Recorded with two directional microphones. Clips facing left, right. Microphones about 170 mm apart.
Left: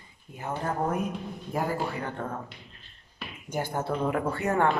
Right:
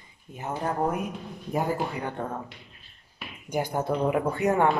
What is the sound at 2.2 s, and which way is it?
Speech, centre (ahead or behind).